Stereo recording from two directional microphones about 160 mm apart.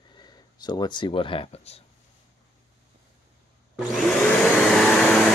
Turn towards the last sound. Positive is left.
turn(degrees=5)  # may be behind; listen again after turning